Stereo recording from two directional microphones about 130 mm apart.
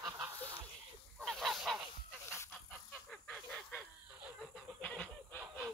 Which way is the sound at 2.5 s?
5° left (ahead or behind).